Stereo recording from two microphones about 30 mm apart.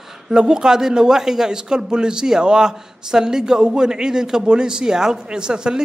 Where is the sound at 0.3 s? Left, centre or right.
Right.